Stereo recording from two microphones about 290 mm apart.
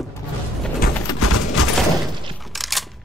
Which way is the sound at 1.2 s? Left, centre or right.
Left.